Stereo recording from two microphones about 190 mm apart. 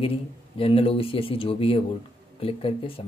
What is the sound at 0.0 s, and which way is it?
Speech, 30° left (ahead or behind).